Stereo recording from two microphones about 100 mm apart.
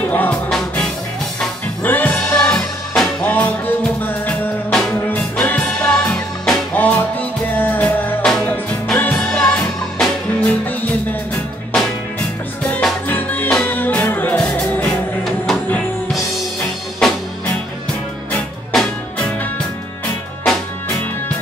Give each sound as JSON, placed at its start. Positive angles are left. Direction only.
{"t": 0.1, "sound": "music", "side_deg": 15}
{"t": 1.8, "sound": "music", "side_deg": 15}
{"t": 13.1, "sound": "music", "side_deg": 20}
{"t": 18.3, "sound": "music", "side_deg": 5}